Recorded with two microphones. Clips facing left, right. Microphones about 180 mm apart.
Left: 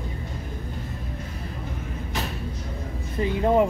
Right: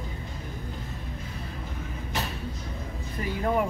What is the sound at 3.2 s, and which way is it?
Speech, 25° left (ahead or behind).